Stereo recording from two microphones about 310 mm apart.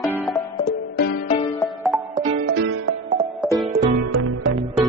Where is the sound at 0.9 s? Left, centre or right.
Left.